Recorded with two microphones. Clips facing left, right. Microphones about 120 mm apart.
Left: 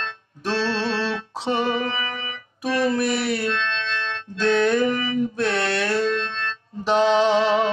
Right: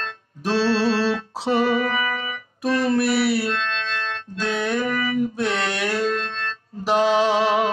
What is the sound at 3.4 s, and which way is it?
Music, 40° right (ahead or behind).